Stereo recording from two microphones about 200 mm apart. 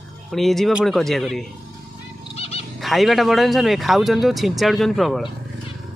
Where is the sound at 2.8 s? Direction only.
Centre (ahead or behind).